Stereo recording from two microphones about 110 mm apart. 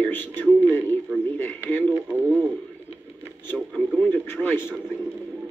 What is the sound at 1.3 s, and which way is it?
Speech, 15° left (ahead or behind).